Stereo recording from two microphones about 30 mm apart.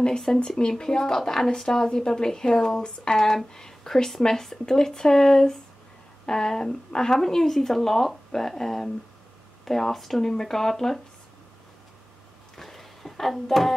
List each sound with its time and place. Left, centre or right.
0.3 s speech: left
3.1 s speech: left
3.5 s speech: centre
12.5 s a sound: centre
13.5 s music: centre